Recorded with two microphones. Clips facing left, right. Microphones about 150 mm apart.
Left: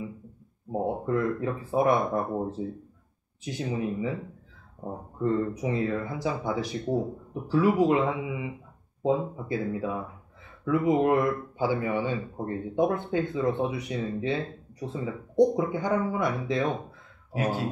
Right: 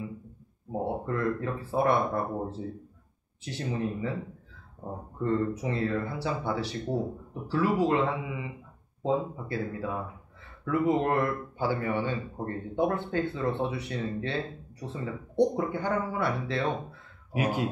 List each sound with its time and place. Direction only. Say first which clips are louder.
0.7 s speech: left 3 dB; 15° left (ahead or behind)
5.2 s speech: left 1 dB; 15° left (ahead or behind)
17.3 s speech: even; 15° right (ahead or behind)